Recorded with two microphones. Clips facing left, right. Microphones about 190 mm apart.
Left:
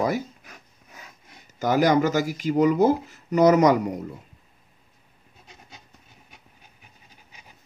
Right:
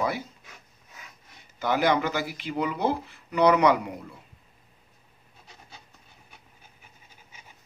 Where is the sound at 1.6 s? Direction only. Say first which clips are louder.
Left 4 dB; 40° left (ahead or behind).